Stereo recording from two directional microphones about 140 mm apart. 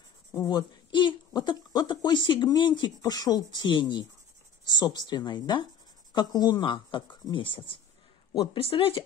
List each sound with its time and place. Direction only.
0.3 s a woman's voice: 30° left (ahead or behind)